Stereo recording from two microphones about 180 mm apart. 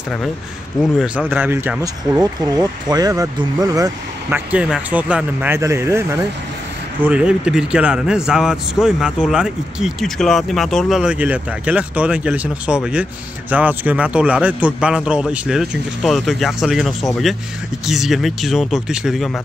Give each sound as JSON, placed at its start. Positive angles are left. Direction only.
{"t": 0.9, "sound": "speech", "side_deg": -5}
{"t": 4.5, "sound": "a man's voice", "side_deg": -5}